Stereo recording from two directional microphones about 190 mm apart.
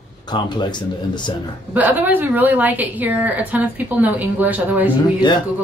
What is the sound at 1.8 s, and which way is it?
A woman's voice, 10° right (ahead or behind).